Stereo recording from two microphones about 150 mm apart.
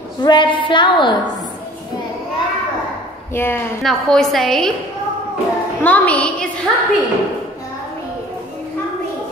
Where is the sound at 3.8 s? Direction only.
Centre (ahead or behind).